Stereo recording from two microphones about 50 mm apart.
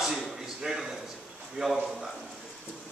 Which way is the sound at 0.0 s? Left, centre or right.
Centre.